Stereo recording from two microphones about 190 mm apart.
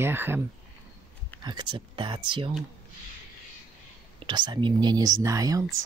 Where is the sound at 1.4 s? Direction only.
25° right (ahead or behind).